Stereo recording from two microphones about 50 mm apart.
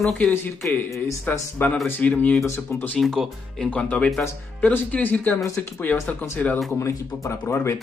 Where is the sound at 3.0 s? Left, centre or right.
Centre.